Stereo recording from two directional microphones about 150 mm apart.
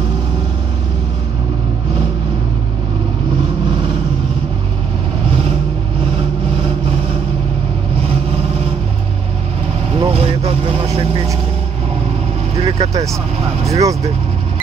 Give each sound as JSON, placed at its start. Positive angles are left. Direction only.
{"t": 9.9, "sound": "vehicle", "side_deg": -35}
{"t": 12.6, "sound": "vehicle", "side_deg": -40}
{"t": 13.7, "sound": "vehicle", "side_deg": -20}